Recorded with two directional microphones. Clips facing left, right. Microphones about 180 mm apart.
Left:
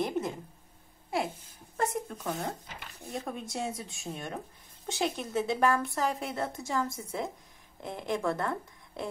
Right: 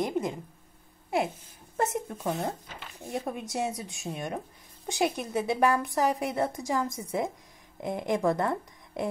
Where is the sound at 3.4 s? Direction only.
20° right (ahead or behind).